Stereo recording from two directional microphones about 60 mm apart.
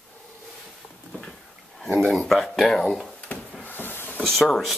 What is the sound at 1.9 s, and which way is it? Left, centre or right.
Speech, centre.